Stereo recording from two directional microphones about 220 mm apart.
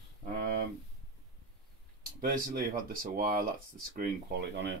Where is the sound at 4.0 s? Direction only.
50° right (ahead or behind).